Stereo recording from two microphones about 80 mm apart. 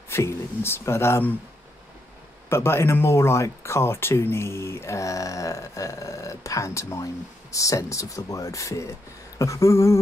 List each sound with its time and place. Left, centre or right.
0.1 s speech: left
2.5 s speech: left